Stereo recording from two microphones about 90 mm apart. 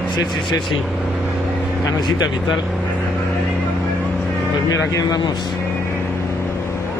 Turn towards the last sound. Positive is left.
turn(degrees=40)  # may be behind; listen again after turning